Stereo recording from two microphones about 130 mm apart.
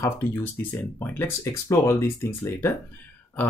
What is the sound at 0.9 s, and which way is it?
Speech, 15° left (ahead or behind).